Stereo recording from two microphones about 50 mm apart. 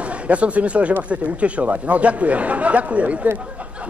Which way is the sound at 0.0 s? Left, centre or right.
Right.